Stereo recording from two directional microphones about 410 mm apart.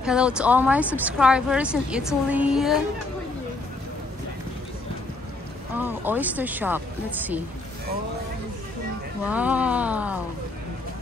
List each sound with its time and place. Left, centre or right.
0.0 s a woman's voice: centre
5.8 s a woman's voice: centre
9.3 s a woman's voice: centre